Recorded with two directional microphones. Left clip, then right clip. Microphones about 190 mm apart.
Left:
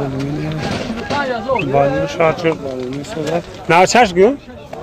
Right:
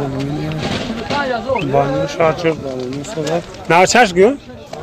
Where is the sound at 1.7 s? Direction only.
5° left (ahead or behind).